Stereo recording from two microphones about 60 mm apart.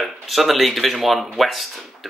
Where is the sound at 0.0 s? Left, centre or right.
Centre.